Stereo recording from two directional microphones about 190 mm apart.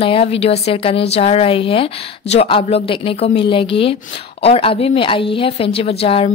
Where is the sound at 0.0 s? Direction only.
30° left (ahead or behind).